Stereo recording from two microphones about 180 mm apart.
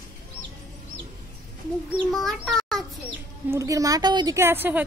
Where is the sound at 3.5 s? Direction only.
20° right (ahead or behind).